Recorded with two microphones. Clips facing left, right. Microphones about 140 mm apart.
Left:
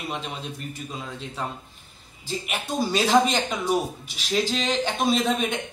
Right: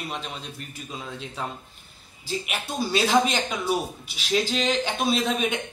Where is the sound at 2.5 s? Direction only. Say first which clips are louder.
Left 3 dB; 5° right (ahead or behind).